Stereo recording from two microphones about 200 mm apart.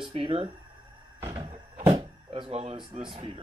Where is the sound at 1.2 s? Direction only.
20° right (ahead or behind).